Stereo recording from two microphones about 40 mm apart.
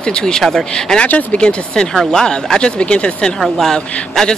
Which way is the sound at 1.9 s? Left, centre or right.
Centre.